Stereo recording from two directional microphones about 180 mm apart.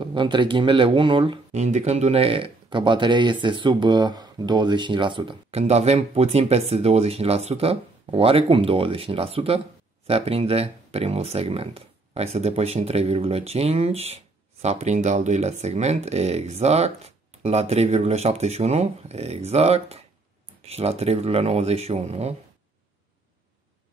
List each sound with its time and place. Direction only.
0.0 s speech: 25° right (ahead or behind)